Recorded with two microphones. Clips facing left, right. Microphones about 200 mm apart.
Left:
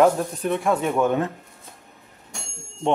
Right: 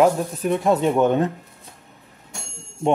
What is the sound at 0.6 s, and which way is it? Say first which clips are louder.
Speech: right 4 dB; 30° right (ahead or behind).